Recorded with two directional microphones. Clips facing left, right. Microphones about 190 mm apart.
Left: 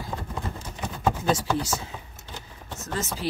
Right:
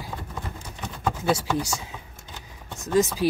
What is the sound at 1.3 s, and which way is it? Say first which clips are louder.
Speech: even; 15° right (ahead or behind).